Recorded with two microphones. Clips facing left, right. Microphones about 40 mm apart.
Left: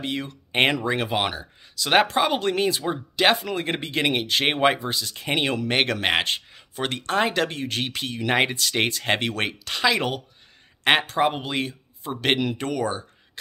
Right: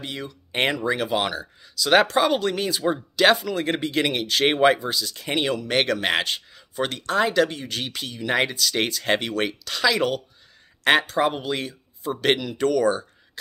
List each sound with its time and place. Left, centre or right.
0.0 s speech: left
4.7 s speech: left